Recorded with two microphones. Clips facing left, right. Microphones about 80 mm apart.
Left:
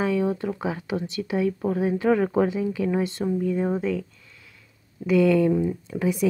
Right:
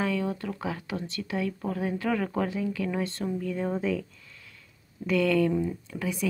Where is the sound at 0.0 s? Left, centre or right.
Centre.